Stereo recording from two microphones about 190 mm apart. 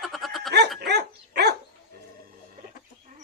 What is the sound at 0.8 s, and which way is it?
Dog, 60° right (ahead or behind).